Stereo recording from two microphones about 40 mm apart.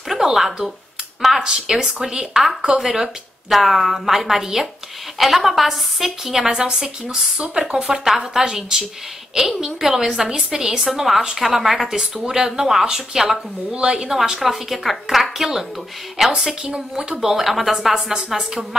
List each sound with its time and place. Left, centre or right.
0.1 s speech: centre
1.4 s a woman's voice: centre
7.3 s speech: right
7.6 s a woman's voice: centre
13.7 s speech: right
14.0 s a woman's voice: centre